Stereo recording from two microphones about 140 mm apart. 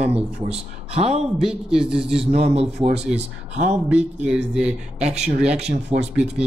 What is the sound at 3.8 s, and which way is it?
Speech, 10° right (ahead or behind).